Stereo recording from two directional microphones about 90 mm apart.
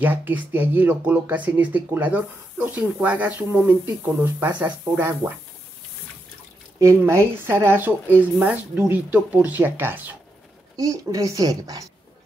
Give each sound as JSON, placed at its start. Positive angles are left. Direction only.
{"t": 0.0, "sound": "speech", "side_deg": -20}
{"t": 6.8, "sound": "speech", "side_deg": -35}
{"t": 10.8, "sound": "a woman's voice", "side_deg": -40}